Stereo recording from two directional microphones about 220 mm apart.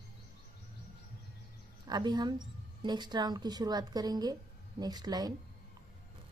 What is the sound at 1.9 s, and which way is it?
A woman's voice, 20° right (ahead or behind).